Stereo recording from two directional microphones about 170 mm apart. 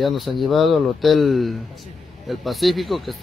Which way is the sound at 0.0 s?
Centre (ahead or behind).